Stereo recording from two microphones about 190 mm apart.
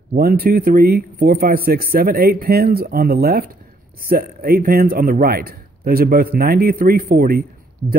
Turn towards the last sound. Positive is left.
turn(degrees=-50)  # may be behind; listen again after turning